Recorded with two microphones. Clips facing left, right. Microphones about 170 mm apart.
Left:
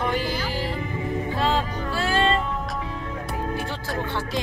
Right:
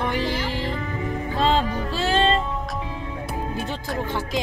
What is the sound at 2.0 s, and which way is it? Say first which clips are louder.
Music: right 2 dB; 25° right (ahead or behind).